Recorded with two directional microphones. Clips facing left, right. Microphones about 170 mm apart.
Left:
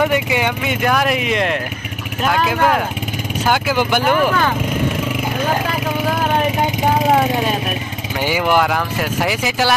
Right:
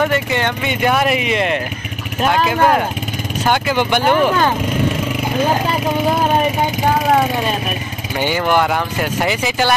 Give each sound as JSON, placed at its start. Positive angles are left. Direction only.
{"t": 0.0, "sound": "speech", "side_deg": 10}
{"t": 4.3, "sound": "speech", "side_deg": -15}
{"t": 8.2, "sound": "speech", "side_deg": 5}